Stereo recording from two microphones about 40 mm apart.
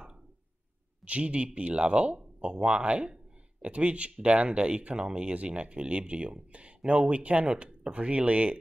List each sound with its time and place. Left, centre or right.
1.0 s speech: right